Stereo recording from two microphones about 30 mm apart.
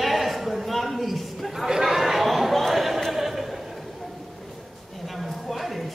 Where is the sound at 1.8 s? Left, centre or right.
Centre.